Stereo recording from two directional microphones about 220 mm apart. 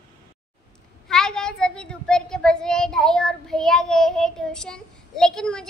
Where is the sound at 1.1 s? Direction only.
5° left (ahead or behind).